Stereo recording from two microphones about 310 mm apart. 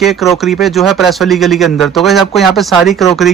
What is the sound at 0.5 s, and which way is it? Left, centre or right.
Speech, centre.